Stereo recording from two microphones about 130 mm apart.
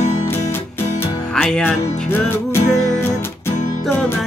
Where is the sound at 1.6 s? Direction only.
15° left (ahead or behind).